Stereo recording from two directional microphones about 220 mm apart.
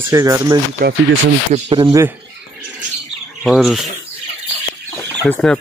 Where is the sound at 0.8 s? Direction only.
40° right (ahead or behind).